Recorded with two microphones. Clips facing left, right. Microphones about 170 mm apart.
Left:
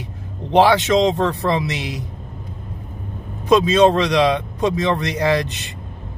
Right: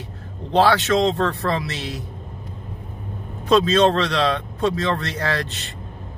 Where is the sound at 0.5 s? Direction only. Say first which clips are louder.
Left 3 dB; 15° left (ahead or behind).